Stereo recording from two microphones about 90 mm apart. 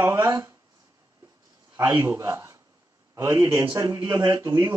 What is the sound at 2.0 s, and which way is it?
A man's voice, 35° right (ahead or behind).